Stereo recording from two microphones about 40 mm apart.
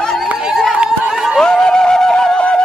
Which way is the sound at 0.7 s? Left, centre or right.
Right.